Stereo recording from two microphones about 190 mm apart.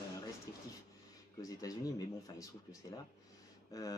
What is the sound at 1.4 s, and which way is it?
Speech, 20° left (ahead or behind).